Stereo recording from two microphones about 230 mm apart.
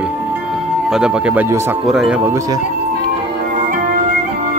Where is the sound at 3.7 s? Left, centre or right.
Right.